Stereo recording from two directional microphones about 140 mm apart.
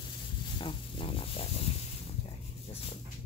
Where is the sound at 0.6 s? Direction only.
40° left (ahead or behind).